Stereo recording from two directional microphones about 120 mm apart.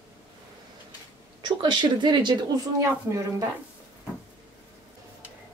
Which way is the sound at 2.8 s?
25° right (ahead or behind).